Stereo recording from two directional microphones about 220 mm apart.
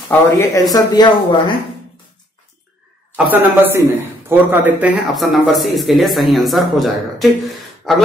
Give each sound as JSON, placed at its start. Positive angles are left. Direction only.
{"t": 0.1, "sound": "speech", "side_deg": 15}
{"t": 3.3, "sound": "a man's voice", "side_deg": -10}